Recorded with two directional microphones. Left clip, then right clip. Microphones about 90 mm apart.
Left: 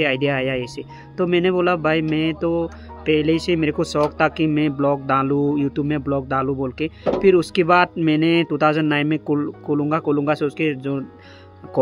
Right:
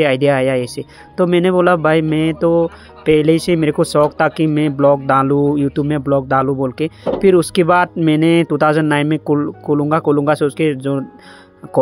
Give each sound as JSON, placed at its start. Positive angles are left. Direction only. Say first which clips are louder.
{"t": 0.0, "sound": "speech", "louder": "right 7 dB", "side_deg": -70}
{"t": 9.8, "sound": "speech", "louder": "right 6 dB", "side_deg": -55}